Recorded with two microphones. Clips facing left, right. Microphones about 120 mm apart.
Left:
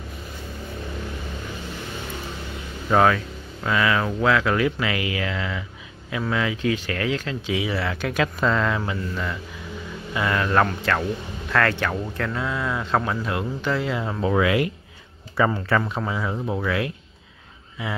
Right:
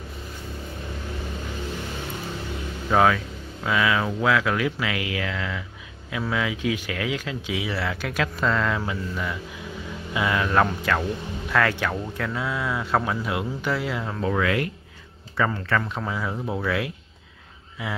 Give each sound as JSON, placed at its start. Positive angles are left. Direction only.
{"t": 2.9, "sound": "speech", "side_deg": 0}